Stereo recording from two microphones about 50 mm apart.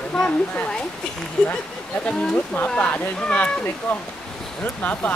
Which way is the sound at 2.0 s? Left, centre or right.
Left.